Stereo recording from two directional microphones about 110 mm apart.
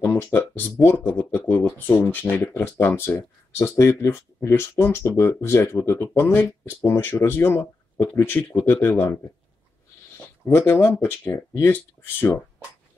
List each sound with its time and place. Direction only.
0.0 s speech: 20° left (ahead or behind)
10.2 s speech: 20° left (ahead or behind)